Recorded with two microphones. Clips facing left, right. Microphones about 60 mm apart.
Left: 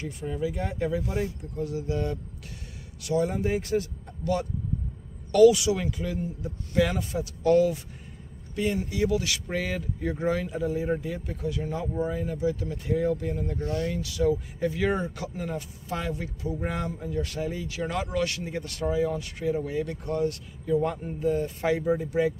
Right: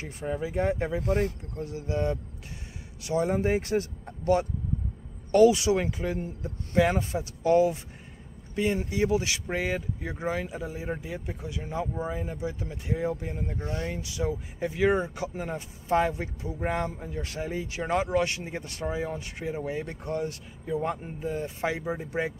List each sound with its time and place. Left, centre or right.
0.2 s speech: right
1.6 s speech: right
7.4 s speech: right